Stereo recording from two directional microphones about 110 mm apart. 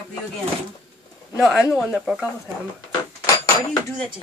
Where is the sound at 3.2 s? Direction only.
35° left (ahead or behind).